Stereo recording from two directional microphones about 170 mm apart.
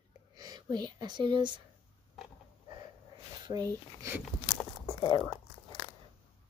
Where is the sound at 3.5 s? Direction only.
20° right (ahead or behind).